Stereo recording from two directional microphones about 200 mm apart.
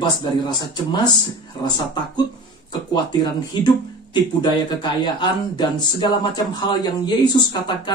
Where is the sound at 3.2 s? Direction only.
20° left (ahead or behind).